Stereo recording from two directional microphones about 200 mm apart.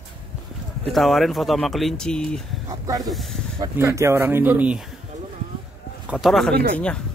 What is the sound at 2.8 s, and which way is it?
Speech, 20° right (ahead or behind).